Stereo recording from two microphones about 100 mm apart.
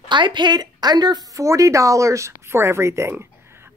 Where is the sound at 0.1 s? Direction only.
50° right (ahead or behind).